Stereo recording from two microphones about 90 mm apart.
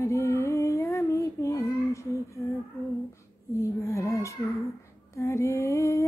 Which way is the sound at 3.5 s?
35° left (ahead or behind).